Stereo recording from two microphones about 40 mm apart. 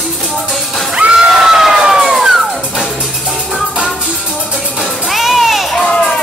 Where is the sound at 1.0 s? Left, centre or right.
Right.